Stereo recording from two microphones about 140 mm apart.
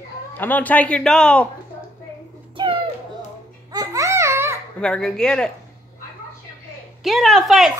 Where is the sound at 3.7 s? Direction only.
25° right (ahead or behind).